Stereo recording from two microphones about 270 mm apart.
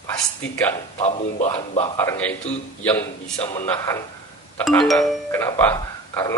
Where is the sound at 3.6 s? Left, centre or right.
Centre.